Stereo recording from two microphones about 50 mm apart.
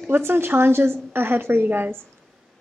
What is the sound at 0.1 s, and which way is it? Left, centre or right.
A woman's voice, right.